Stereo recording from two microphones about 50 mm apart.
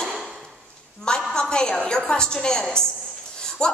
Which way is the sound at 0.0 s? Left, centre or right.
Centre.